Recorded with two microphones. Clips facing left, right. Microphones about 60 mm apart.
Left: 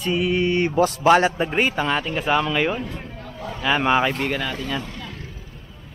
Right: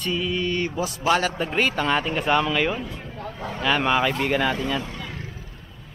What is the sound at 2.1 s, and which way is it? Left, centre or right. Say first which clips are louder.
Speech: left 1 dB; centre.